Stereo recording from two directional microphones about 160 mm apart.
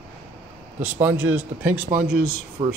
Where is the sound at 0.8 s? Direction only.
10° right (ahead or behind).